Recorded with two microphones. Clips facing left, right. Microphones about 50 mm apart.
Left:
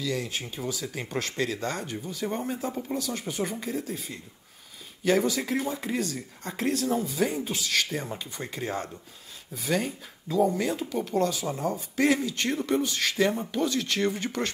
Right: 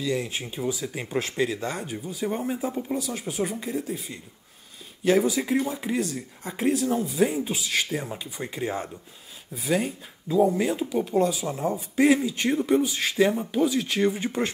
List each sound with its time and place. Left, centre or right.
0.0 s speech: centre